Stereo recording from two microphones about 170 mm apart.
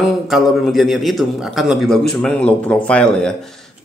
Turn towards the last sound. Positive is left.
turn(degrees=5)  # may be behind; listen again after turning